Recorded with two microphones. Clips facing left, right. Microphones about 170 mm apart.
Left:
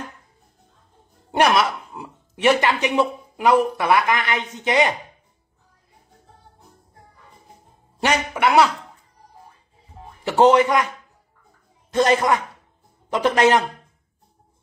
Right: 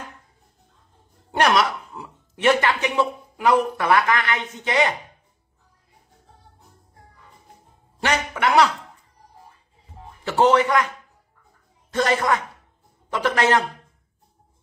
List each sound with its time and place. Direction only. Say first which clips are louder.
1.3 s speech: left 1 dB; 5° left (ahead or behind)
8.0 s speech: left 2 dB; 10° left (ahead or behind)
10.2 s speech: left 3 dB; 15° left (ahead or behind)
11.9 s a man's voice: left 3 dB; 20° left (ahead or behind)